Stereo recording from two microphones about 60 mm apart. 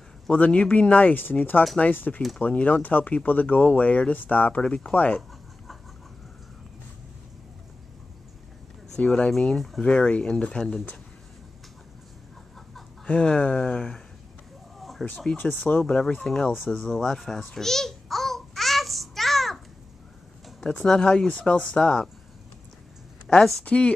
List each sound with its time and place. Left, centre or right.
0.3 s speech: left
8.9 s speech: centre
13.0 s speech: left
14.8 s chicken: centre
15.3 s speech: centre
16.8 s babbling: centre
20.8 s speech: centre
23.3 s speech: centre